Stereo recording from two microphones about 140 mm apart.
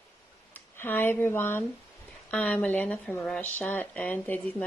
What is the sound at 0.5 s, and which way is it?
Speech, 15° left (ahead or behind).